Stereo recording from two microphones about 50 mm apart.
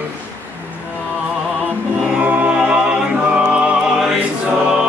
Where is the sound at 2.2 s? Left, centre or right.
Right.